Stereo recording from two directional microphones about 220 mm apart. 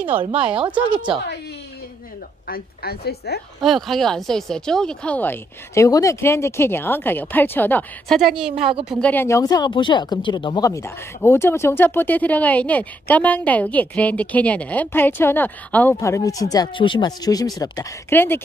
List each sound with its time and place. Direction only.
0.4 s speech: 25° right (ahead or behind)
2.4 s a woman's voice: 45° left (ahead or behind)
3.6 s a woman's voice: centre (ahead or behind)
9.1 s speech: 10° left (ahead or behind)